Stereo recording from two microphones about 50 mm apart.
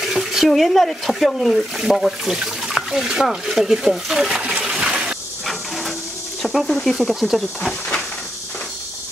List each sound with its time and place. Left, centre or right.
0.0 s a sound: centre
0.5 s speech: centre
6.4 s speech: centre